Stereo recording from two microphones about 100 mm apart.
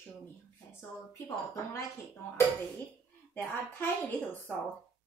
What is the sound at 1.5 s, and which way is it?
Speech, 30° left (ahead or behind).